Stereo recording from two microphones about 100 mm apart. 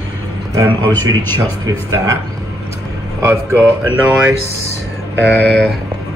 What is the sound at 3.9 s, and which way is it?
Speech, 15° right (ahead or behind).